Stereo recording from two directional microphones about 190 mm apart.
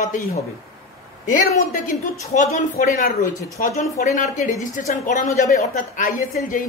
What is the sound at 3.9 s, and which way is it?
Speech, 40° left (ahead or behind).